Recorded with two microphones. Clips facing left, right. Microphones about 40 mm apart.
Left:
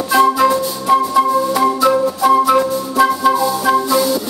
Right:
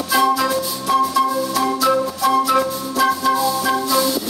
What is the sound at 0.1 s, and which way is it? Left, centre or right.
Music, left.